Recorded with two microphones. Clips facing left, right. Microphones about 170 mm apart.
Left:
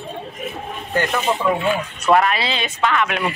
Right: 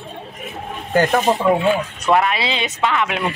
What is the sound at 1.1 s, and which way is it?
Speech, 40° right (ahead or behind).